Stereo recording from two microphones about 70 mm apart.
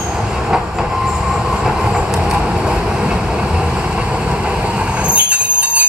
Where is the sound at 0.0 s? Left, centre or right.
Centre.